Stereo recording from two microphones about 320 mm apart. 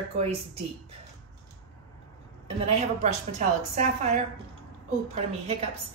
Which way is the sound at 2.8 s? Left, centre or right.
Right.